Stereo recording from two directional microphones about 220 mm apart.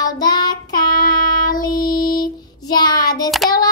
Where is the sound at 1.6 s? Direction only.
15° left (ahead or behind).